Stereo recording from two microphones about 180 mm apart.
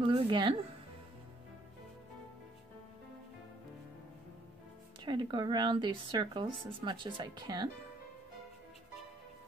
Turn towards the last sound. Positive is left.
turn(degrees=-25)  # may be behind; listen again after turning